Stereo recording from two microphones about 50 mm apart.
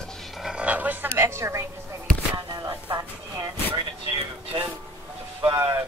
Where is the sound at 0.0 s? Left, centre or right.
Centre.